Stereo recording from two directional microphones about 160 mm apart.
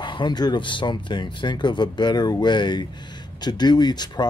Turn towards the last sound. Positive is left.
turn(degrees=25)  # may be behind; listen again after turning